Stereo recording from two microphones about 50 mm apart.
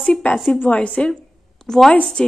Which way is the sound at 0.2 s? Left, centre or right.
Left.